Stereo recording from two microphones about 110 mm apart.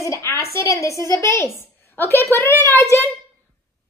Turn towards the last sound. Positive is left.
turn(degrees=25)  # may be behind; listen again after turning